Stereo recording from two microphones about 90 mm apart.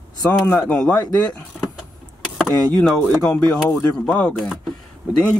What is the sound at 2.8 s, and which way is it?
Speech, 15° left (ahead or behind).